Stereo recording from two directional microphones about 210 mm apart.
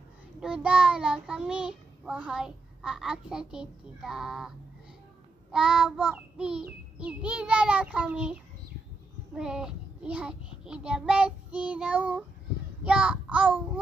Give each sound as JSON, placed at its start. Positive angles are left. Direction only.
{"t": 0.4, "sound": "child singing", "side_deg": -5}
{"t": 5.5, "sound": "child singing", "side_deg": -5}